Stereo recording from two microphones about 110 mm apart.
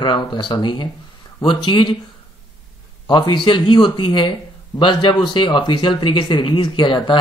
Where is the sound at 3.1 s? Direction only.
50° left (ahead or behind).